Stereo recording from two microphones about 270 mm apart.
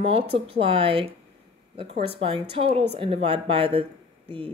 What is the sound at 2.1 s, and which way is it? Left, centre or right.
A woman's voice, centre.